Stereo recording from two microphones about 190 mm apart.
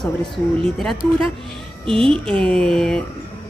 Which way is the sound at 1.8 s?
30° right (ahead or behind).